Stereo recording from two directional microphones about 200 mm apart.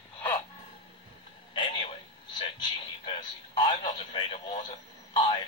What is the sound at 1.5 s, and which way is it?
A man's voice, 25° left (ahead or behind).